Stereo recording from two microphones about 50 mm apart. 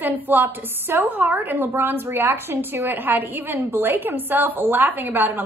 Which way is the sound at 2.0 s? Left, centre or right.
Right.